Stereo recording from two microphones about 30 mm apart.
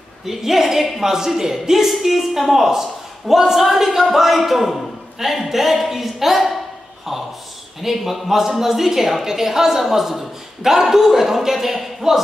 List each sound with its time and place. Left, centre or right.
0.3 s a man's voice: centre